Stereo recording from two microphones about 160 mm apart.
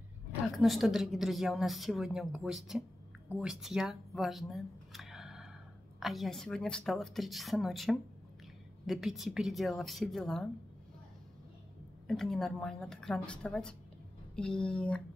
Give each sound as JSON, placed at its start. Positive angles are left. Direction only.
{"t": 0.6, "sound": "a woman's voice", "side_deg": 0}
{"t": 12.1, "sound": "a woman's voice", "side_deg": 0}